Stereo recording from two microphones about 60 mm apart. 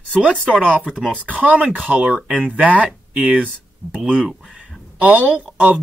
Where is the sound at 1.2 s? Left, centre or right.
Right.